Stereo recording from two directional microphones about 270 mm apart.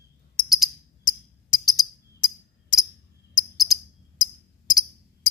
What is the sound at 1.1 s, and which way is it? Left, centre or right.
Tambourine, left.